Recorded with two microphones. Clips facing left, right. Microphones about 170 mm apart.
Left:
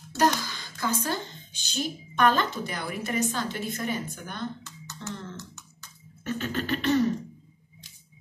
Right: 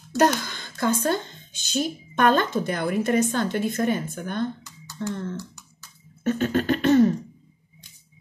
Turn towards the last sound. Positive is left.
turn(degrees=-50)  # may be behind; listen again after turning